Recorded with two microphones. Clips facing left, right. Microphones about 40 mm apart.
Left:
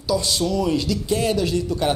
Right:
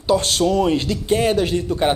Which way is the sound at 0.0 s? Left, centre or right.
Right.